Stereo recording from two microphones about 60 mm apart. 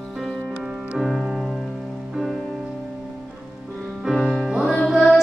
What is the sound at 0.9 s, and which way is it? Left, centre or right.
Music, centre.